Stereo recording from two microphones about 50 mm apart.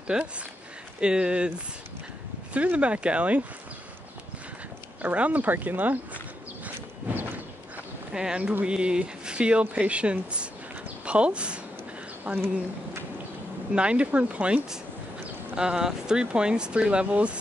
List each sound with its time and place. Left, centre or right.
0.0 s speech: right
2.5 s speech: right
5.0 s speech: right
6.6 s a sound: right
8.1 s speech: centre
13.7 s speech: right
15.5 s speech: centre